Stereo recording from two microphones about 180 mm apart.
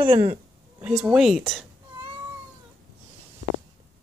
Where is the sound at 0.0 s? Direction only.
30° right (ahead or behind).